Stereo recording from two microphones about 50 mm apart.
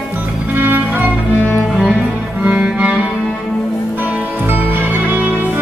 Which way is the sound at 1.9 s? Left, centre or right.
Centre.